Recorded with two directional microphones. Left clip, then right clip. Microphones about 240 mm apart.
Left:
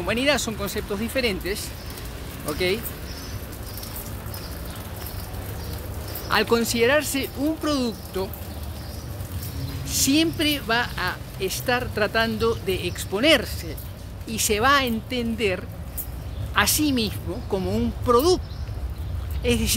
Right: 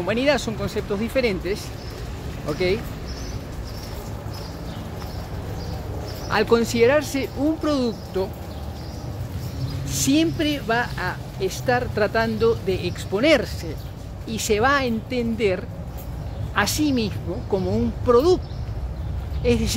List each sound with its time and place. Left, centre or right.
0.0 s a woman's voice: centre
6.3 s speech: centre
9.8 s a woman's voice: centre
19.4 s speech: centre